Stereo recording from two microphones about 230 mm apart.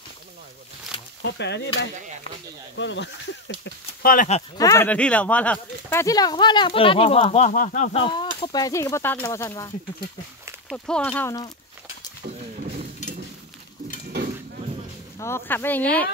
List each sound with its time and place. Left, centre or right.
1.2 s speech: left
3.6 s speech: left
4.6 s speech: centre
10.7 s speech: centre
15.1 s speech: centre